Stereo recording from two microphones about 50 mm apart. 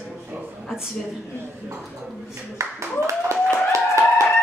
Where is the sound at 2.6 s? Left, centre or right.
Right.